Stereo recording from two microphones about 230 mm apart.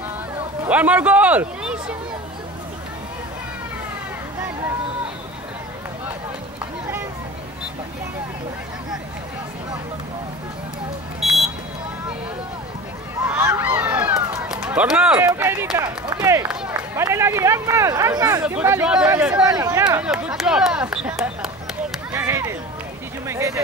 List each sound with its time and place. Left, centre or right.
0.7 s speech: centre
11.1 s buzzer: centre
13.3 s speech: centre
20.1 s speech: centre
22.1 s run: centre
23.2 s a sound: centre